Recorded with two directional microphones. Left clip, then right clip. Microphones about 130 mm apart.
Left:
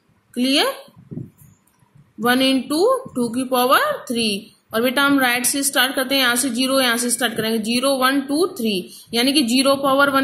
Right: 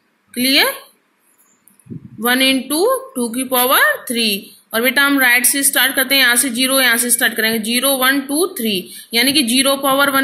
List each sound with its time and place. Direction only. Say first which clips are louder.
0.3 s a woman's voice: right 4 dB; 15° left (ahead or behind)
2.1 s a woman's voice: right 3 dB; 15° left (ahead or behind)